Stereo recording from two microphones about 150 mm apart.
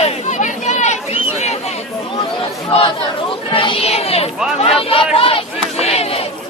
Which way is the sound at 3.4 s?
35° left (ahead or behind).